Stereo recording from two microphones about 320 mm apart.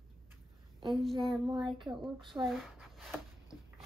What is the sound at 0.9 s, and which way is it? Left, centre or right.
Child singing, centre.